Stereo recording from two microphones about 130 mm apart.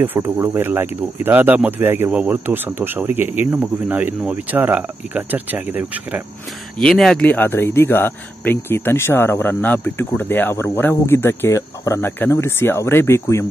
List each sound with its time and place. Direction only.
0.0 s speech: 15° right (ahead or behind)
6.8 s speech: 5° left (ahead or behind); by 13.5 s 20° left (ahead or behind)